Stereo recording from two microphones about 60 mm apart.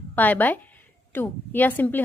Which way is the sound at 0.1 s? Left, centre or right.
Left.